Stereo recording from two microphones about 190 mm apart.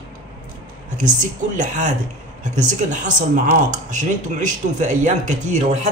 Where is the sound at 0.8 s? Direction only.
40° right (ahead or behind).